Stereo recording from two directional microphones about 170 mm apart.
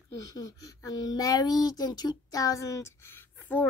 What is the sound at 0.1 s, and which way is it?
A child's voice, 20° left (ahead or behind).